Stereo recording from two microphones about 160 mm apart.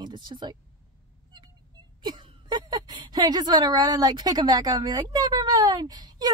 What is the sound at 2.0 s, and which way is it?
A woman's voice, 25° right (ahead or behind).